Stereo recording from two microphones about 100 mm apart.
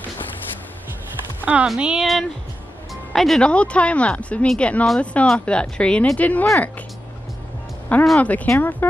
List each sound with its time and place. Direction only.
1.4 s speech: 15° right (ahead or behind); by 6.4 s 15° left (ahead or behind)
8.2 s speech: 15° left (ahead or behind)